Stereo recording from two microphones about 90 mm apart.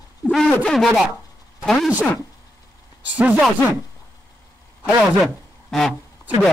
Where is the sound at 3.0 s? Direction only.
15° right (ahead or behind).